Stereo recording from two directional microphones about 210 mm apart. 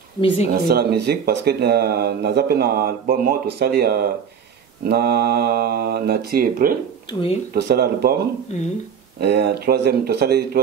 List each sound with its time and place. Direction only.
0.5 s speech: 45° right (ahead or behind)
7.1 s speech: 25° left (ahead or behind)
7.5 s speech: 50° right (ahead or behind)
8.5 s speech: 35° left (ahead or behind)
9.2 s speech: 50° right (ahead or behind)